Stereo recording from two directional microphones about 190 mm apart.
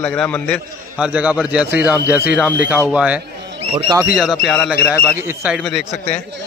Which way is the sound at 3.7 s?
20° right (ahead or behind).